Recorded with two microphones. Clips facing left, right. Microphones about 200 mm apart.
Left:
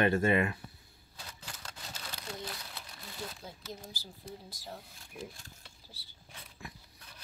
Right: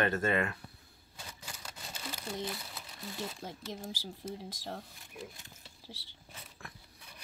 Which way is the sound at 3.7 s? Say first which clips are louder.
Right 4 dB; 90° right.